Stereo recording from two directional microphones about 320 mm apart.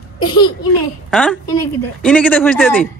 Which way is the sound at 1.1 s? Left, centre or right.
Centre.